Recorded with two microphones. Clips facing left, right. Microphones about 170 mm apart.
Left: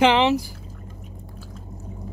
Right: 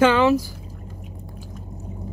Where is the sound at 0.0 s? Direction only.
20° left (ahead or behind).